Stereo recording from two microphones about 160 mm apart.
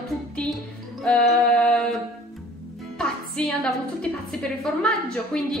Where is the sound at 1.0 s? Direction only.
5° left (ahead or behind).